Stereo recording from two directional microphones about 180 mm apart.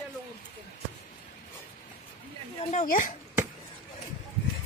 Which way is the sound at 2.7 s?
45° left (ahead or behind).